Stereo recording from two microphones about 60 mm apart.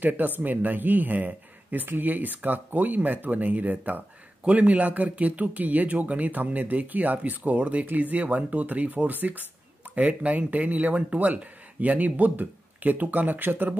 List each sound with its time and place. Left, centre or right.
0.0 s speech: right